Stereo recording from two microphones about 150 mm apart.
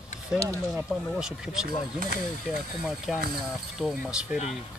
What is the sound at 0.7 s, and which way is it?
Speech, 5° right (ahead or behind).